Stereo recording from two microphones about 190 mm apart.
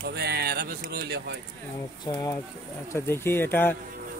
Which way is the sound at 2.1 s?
20° left (ahead or behind).